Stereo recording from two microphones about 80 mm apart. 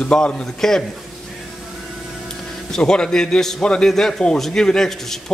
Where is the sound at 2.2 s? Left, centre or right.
Centre.